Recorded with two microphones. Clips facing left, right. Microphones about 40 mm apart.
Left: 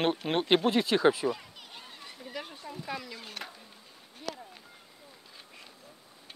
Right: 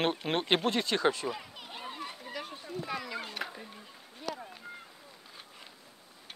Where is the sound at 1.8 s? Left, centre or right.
Right.